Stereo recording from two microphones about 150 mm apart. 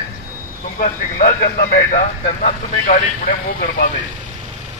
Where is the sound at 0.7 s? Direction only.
65° left (ahead or behind).